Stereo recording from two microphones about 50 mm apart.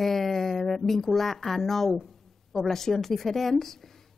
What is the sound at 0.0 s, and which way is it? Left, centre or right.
Music, centre.